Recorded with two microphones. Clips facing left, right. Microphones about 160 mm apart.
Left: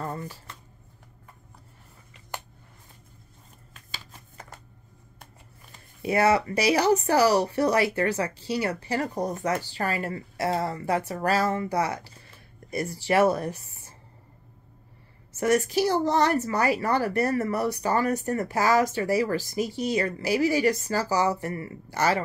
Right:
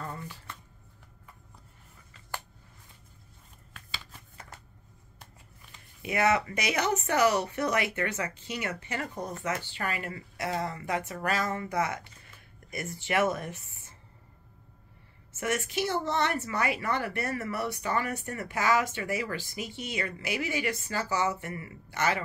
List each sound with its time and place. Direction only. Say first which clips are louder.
0.0 s dishes: left 6 dB; 40° left (ahead or behind)
3.7 s shuffling cards: even; 40° left (ahead or behind)
5.2 s speech: left 3 dB; 40° left (ahead or behind)
15.3 s speech: left 8 dB; 40° left (ahead or behind)